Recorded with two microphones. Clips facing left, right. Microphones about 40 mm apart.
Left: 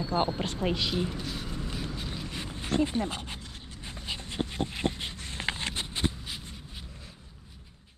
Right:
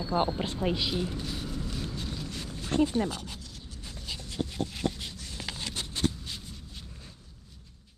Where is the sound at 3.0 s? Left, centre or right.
Left.